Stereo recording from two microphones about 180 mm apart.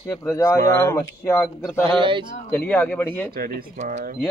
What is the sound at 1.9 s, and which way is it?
Speech, 25° right (ahead or behind).